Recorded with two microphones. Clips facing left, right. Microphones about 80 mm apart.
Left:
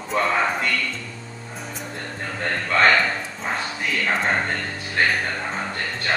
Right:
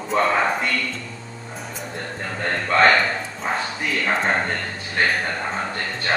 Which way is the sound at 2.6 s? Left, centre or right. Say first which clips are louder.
Right 2 dB; centre.